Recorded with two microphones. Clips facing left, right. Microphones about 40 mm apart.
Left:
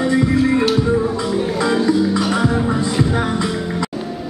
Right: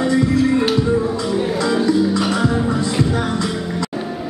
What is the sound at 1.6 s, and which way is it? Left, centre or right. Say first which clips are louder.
Music: left 1 dB; left.